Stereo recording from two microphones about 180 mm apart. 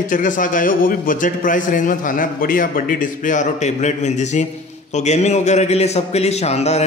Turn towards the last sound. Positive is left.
turn(degrees=35)  # may be behind; listen again after turning